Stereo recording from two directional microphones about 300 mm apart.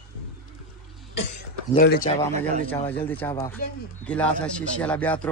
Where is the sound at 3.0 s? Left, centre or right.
Centre.